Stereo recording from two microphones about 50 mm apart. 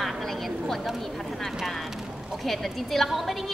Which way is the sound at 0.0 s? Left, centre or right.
Centre.